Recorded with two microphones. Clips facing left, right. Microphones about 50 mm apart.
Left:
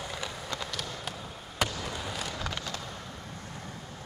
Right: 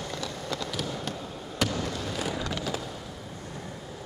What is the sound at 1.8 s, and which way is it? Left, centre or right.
Fireworks, centre.